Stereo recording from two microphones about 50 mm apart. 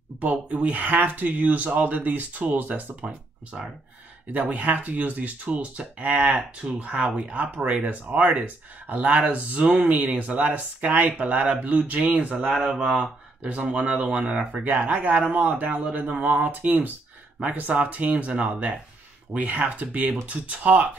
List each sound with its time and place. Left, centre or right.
0.2 s speech: right
4.3 s speech: right
12.7 s speech: centre